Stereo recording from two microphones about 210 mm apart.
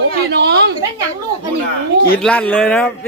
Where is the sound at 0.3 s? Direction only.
55° right (ahead or behind).